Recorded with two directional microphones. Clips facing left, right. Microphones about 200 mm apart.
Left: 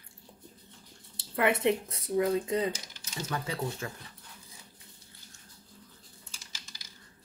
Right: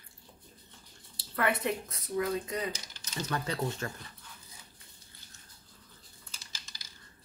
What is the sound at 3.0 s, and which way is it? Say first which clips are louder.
Speech: right 1 dB; 10° left (ahead or behind).